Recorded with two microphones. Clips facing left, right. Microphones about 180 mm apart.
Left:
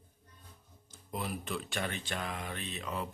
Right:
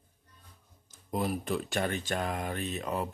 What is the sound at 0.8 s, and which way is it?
Speech, 40° right (ahead or behind).